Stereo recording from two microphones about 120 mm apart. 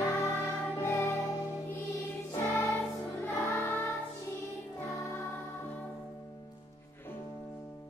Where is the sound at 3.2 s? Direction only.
20° left (ahead or behind).